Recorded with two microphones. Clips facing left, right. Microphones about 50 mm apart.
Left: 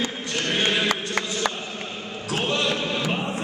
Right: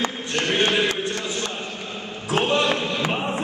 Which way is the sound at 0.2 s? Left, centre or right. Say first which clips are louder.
Right 4 dB; right.